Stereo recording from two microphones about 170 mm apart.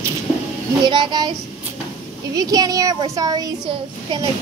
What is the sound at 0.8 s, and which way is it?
Speech, 25° right (ahead or behind).